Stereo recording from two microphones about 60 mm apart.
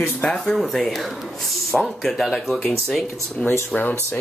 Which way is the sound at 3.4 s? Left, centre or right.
Centre.